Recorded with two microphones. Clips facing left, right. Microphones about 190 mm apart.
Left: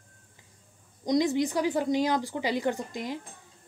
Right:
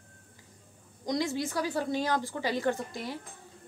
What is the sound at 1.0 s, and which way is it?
A woman's voice, 20° left (ahead or behind).